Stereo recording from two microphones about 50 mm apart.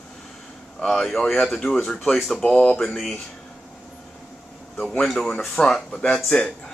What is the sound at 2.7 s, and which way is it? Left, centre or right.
Speech, centre.